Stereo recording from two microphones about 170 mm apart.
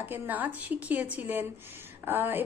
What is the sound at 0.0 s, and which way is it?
A woman's voice, 10° right (ahead or behind).